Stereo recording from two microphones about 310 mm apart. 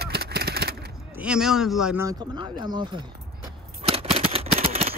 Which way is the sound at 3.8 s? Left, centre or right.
Centre.